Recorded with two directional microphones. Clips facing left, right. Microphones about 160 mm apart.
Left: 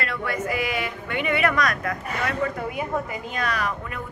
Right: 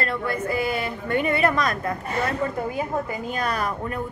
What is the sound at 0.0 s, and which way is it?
Speech, 30° right (ahead or behind).